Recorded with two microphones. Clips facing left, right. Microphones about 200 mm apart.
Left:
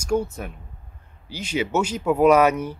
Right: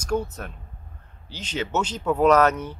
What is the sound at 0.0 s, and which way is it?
Speech, 10° left (ahead or behind).